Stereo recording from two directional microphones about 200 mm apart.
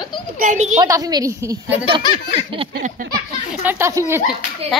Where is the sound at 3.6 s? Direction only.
10° right (ahead or behind).